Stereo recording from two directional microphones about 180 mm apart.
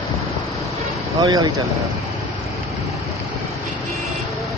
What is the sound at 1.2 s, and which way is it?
Speech, 20° right (ahead or behind).